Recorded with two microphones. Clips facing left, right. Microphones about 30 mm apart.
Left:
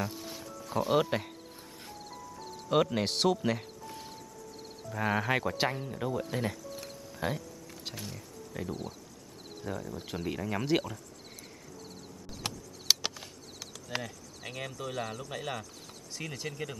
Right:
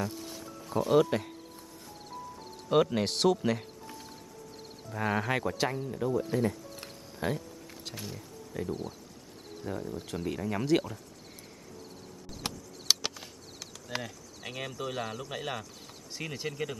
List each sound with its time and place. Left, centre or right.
0.0 s a sound: centre
0.7 s speech: centre
2.7 s speech: centre
4.9 s speech: centre
5.6 s speech: left
7.2 s speech: centre
9.6 s speech: left
9.9 s speech: centre
12.4 s a sound: centre
16.2 s speech: centre